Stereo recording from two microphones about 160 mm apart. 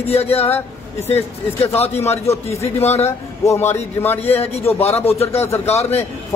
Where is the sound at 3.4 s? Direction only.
15° left (ahead or behind).